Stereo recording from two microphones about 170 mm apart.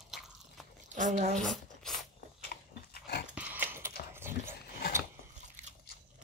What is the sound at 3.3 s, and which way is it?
Dog, 10° right (ahead or behind).